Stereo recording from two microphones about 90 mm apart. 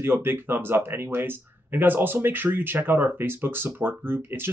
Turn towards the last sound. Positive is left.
turn(degrees=-25)  # may be behind; listen again after turning